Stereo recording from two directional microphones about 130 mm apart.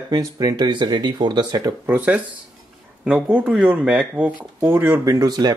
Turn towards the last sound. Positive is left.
turn(degrees=-30)  # may be behind; listen again after turning